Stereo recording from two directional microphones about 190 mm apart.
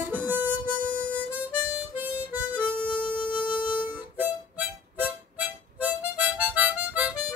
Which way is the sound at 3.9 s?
10° right (ahead or behind).